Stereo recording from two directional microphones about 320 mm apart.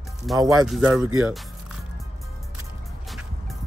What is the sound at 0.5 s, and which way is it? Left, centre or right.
Speech, centre.